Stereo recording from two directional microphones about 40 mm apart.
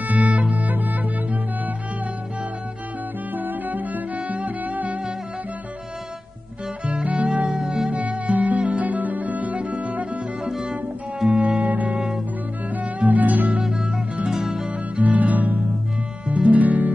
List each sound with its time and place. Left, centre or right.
0.0 s music: right
3.3 s music: right
6.9 s music: right
7.6 s music: centre
7.9 s music: right
11.2 s music: right
13.0 s music: right
13.6 s music: centre
14.7 s music: right